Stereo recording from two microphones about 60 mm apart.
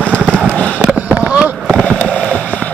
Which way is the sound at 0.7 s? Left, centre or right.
Right.